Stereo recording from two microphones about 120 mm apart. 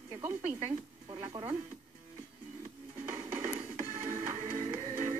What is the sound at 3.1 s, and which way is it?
Music, 65° right (ahead or behind).